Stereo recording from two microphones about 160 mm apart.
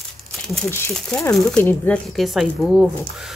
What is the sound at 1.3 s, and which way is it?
Speech, 5° left (ahead or behind).